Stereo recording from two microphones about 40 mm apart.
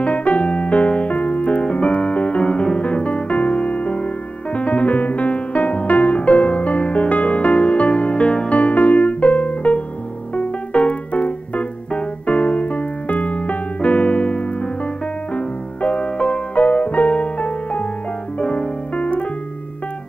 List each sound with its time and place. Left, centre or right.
0.0 s music: left
10.3 s keyboard: left
15.3 s music: left
18.4 s piano: left